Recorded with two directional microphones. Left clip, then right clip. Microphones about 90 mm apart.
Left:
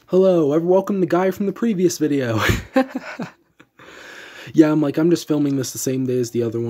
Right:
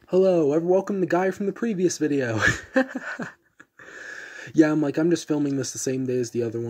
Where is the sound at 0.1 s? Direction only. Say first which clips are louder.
Left 4 dB; 10° left (ahead or behind).